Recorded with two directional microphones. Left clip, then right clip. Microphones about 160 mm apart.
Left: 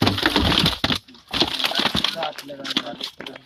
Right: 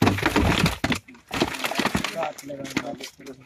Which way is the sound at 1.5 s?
20° left (ahead or behind).